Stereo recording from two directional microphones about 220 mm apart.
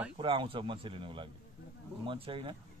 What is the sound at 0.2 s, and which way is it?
Speech, 20° right (ahead or behind).